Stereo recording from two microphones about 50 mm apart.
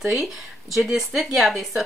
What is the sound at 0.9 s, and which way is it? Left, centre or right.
Speech, centre.